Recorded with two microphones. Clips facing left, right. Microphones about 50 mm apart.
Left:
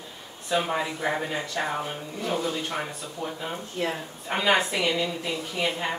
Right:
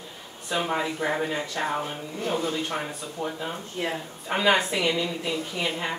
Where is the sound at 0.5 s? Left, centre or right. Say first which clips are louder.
Left 1 dB; centre.